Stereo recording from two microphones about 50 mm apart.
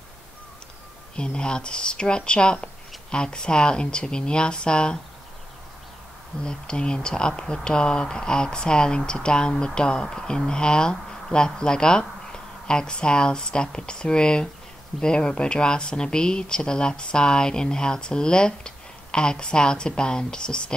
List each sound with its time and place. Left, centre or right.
1.1 s speech: centre
6.4 s speech: centre